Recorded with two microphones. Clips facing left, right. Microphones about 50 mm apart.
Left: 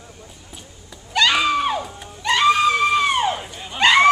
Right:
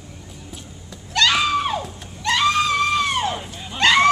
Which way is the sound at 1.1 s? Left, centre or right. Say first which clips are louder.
Left 1 dB; centre.